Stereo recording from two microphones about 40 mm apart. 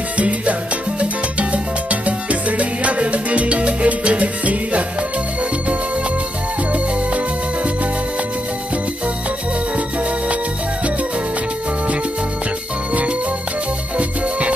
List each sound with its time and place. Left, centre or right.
0.2 s music: right